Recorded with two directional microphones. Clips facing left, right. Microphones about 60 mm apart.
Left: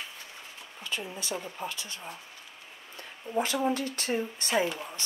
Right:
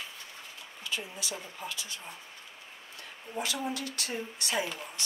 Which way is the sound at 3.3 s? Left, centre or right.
Left.